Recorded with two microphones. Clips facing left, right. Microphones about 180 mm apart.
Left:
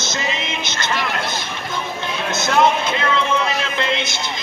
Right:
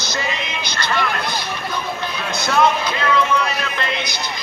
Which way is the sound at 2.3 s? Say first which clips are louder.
Left 1 dB; 20° left (ahead or behind).